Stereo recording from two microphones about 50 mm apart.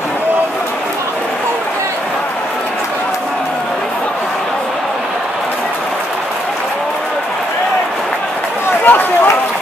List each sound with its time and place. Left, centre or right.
8.8 s speech: left